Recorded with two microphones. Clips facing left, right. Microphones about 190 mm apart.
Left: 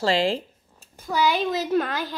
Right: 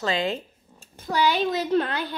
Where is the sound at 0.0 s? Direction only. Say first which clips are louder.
Left 4 dB; 30° left (ahead or behind).